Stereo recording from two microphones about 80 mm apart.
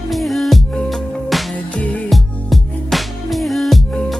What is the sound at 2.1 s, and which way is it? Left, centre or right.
Music, centre.